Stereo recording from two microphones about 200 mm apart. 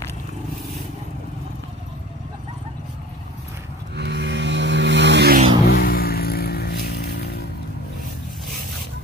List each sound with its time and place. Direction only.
3.9 s vehicle: 55° right (ahead or behind)
5.7 s music: 50° left (ahead or behind)